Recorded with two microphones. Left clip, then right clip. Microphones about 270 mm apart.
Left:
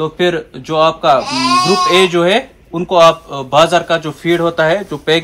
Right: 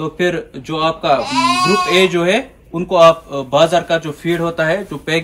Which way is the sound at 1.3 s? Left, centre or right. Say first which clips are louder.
Left 1 dB; centre.